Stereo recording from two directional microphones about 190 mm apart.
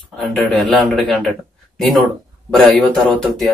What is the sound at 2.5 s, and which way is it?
Speech, centre (ahead or behind).